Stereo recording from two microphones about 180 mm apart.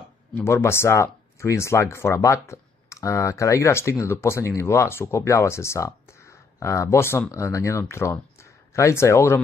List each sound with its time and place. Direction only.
0.3 s speech: 15° left (ahead or behind)